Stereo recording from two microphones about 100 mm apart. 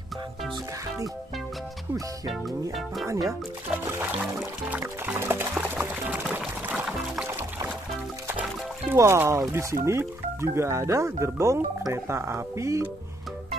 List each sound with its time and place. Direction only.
2.2 s speech: centre (ahead or behind)
3.1 s speech: 30° right (ahead or behind)
4.6 s speech: 15° right (ahead or behind)
6.6 s music: 10° right (ahead or behind)
7.2 s music: 20° right (ahead or behind)
8.9 s speech: 25° right (ahead or behind)